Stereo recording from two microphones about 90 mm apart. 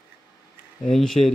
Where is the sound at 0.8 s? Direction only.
5° left (ahead or behind).